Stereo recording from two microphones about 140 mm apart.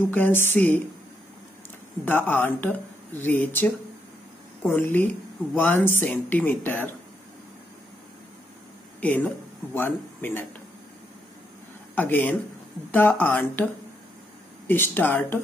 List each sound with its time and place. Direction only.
0.0 s speech: 15° left (ahead or behind)
2.0 s speech: 15° left (ahead or behind)
9.0 s speech: 10° left (ahead or behind)
11.9 s speech: 15° left (ahead or behind)
14.7 s speech: 15° left (ahead or behind)